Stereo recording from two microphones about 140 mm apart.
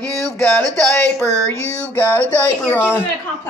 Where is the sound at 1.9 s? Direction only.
15° left (ahead or behind).